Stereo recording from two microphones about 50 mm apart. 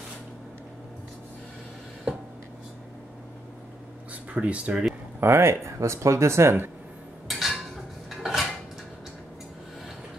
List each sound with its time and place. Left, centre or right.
4.1 s speech: right
5.2 s speech: right
7.2 s a sound: centre
8.1 s dishes: centre